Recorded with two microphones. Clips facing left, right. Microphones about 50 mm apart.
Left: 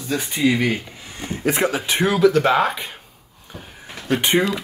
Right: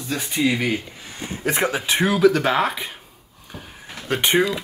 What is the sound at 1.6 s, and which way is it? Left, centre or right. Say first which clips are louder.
Speech: right 1 dB; right.